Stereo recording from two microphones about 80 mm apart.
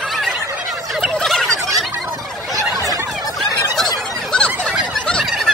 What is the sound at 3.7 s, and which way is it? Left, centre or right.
Fowl, centre.